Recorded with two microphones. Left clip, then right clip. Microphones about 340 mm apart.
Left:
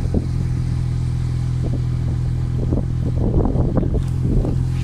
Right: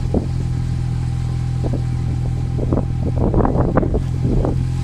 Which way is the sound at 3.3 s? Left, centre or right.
Right.